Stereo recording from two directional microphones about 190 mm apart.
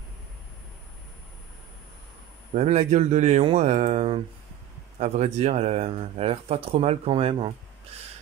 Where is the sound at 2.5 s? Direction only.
35° right (ahead or behind).